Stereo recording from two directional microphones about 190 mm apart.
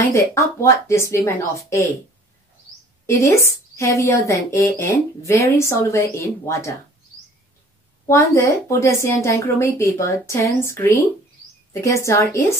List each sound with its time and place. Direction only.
0.1 s a woman's voice: 15° left (ahead or behind)
3.1 s a woman's voice: 15° left (ahead or behind)
8.1 s a woman's voice: 15° left (ahead or behind)